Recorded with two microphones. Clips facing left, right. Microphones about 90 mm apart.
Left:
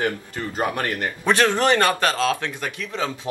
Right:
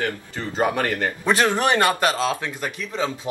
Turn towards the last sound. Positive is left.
turn(degrees=-15)  # may be behind; listen again after turning